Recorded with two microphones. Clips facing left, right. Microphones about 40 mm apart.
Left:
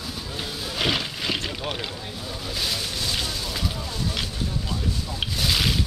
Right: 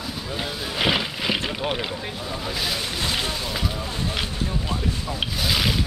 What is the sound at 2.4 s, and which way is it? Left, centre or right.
Speech, centre.